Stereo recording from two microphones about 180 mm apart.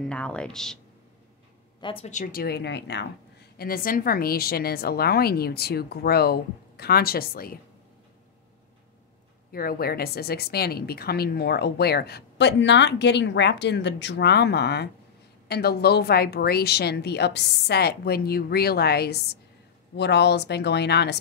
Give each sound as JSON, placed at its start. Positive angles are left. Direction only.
{"t": 0.1, "sound": "speech", "side_deg": 5}
{"t": 1.8, "sound": "speech", "side_deg": 30}
{"t": 2.0, "sound": "a woman's voice", "side_deg": 45}
{"t": 3.5, "sound": "a woman's voice", "side_deg": 55}
{"t": 9.5, "sound": "a woman's voice", "side_deg": 55}